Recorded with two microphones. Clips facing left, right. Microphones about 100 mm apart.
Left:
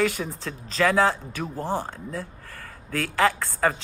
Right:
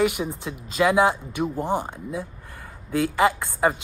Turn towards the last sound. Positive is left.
turn(degrees=-15)  # may be behind; listen again after turning